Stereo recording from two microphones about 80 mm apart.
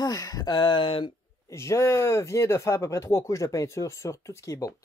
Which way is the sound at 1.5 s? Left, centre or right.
Left.